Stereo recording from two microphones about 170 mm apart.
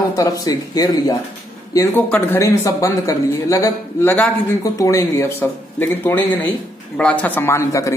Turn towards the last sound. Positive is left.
turn(degrees=15)  # may be behind; listen again after turning